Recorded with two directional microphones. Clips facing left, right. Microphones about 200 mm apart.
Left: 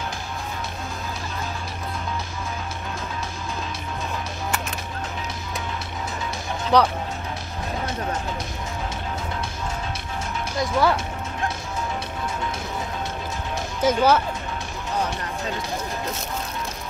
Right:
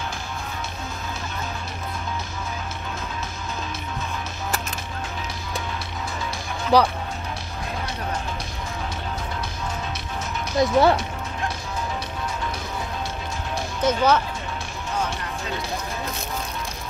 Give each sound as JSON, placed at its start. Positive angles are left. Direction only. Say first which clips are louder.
{"t": 6.7, "sound": "speech", "louder": "right 1 dB", "side_deg": -5}
{"t": 10.6, "sound": "speech", "louder": "right 4 dB", "side_deg": -25}
{"t": 13.7, "sound": "speech", "louder": "left 1 dB", "side_deg": 10}